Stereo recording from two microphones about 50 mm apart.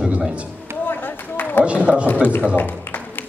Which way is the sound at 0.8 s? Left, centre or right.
Left.